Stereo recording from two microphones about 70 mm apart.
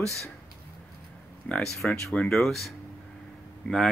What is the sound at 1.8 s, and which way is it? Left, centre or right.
Speech, centre.